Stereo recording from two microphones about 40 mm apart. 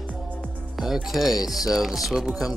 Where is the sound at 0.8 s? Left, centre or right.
Centre.